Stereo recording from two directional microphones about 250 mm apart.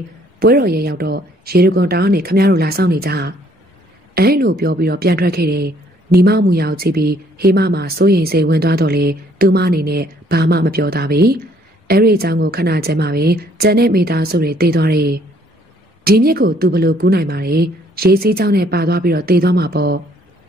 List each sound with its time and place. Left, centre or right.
0.4 s a woman's voice: right